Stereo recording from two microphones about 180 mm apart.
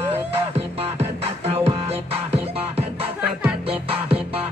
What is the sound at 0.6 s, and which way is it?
Music, 35° right (ahead or behind).